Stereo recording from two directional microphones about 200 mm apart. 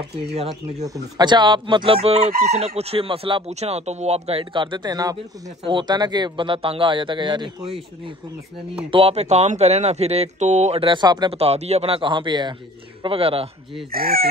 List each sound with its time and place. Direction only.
0.3 s speech: 30° right (ahead or behind)
8.9 s speech: 30° right (ahead or behind)
13.9 s fowl: 50° right (ahead or behind)